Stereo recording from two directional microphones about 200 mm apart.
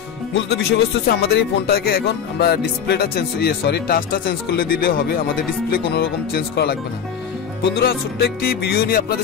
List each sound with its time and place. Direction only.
0.3 s speech: 55° left (ahead or behind)